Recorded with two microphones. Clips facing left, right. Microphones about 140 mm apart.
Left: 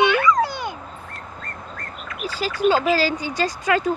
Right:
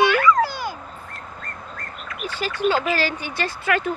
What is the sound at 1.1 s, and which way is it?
Bird, centre (ahead or behind).